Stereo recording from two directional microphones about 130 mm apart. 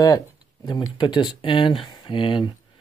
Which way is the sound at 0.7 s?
35° left (ahead or behind).